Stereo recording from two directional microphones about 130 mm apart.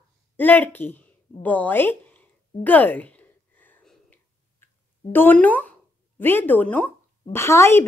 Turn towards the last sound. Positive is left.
turn(degrees=20)  # may be behind; listen again after turning